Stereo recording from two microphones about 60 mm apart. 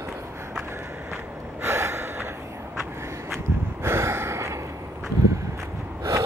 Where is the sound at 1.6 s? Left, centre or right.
Right.